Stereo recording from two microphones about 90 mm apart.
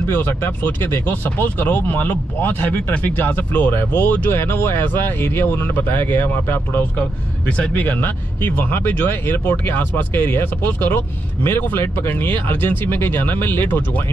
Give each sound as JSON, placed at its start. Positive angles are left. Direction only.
{"t": 0.1, "sound": "speech", "side_deg": 20}